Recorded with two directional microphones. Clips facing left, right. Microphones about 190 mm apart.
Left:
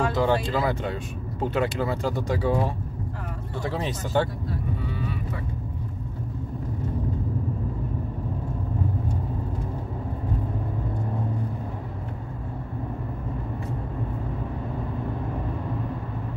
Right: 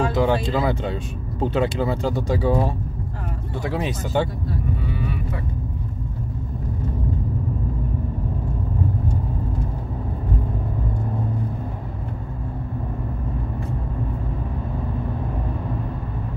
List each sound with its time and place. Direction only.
0.0 s speech: 15° right (ahead or behind)
3.5 s speech: 10° right (ahead or behind)